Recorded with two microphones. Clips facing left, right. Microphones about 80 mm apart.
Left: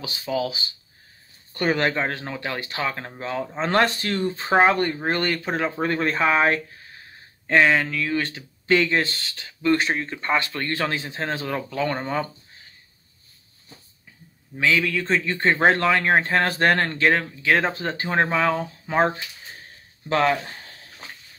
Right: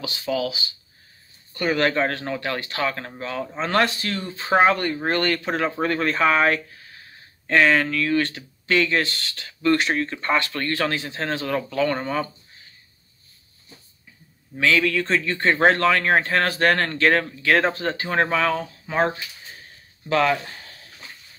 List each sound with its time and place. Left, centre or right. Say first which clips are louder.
0.2 s speech: right 1 dB; left
1.5 s speech: right 1 dB; left
4.7 s speech: even; centre
14.6 s speech: right 2 dB; centre
17.9 s speech: even; centre